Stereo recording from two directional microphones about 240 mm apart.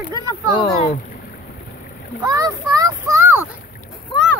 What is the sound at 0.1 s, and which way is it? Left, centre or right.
Speech, centre.